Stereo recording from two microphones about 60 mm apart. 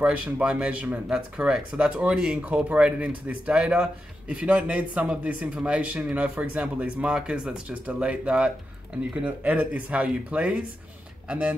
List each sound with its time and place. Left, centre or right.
0.0 s speech: centre
0.8 s speech: right
1.1 s speech: centre